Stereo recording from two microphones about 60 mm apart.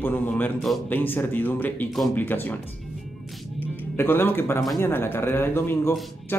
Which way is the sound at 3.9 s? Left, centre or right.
Left.